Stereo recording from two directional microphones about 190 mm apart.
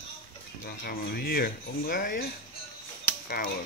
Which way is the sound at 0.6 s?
50° left (ahead or behind).